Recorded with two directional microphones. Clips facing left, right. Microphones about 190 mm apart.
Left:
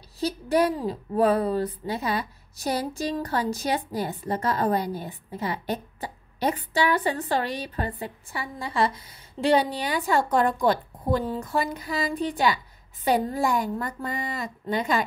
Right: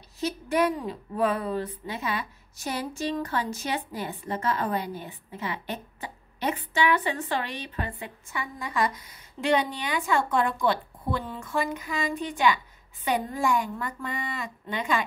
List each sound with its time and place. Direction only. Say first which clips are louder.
0.2 s a woman's voice: left 2 dB; 35° left (ahead or behind)